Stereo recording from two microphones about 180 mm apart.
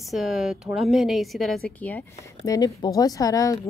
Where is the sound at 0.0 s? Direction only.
Centre (ahead or behind).